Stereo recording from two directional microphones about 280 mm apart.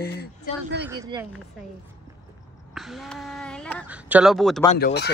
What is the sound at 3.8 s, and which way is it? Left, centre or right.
Speech, centre.